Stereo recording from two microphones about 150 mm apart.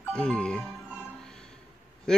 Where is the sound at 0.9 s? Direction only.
10° left (ahead or behind).